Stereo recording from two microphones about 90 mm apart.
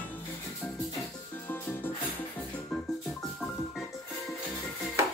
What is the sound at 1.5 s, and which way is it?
Music, 25° left (ahead or behind).